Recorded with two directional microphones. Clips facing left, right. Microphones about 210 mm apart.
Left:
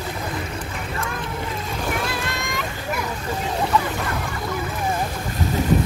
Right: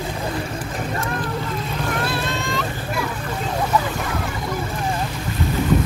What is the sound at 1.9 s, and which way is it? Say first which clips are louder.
Music: right 2 dB; 10° left (ahead or behind).